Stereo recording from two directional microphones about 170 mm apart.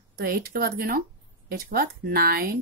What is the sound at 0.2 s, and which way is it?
Speech, 65° right (ahead or behind).